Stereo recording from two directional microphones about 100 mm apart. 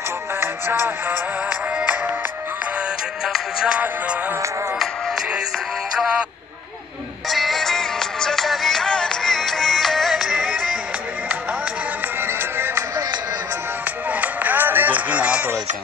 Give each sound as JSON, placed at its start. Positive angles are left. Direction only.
{"t": 0.4, "sound": "music", "side_deg": -25}
{"t": 3.3, "sound": "music", "side_deg": -5}
{"t": 7.2, "sound": "music", "side_deg": 0}
{"t": 12.5, "sound": "music", "side_deg": -25}
{"t": 14.2, "sound": "music", "side_deg": -15}